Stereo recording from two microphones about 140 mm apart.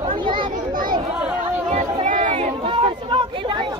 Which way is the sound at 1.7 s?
60° right (ahead or behind).